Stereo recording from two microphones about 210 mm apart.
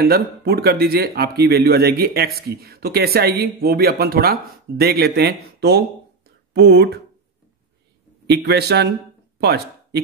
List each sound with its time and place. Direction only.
0.0 s speech: 45° right (ahead or behind)
8.3 s speech: 50° right (ahead or behind)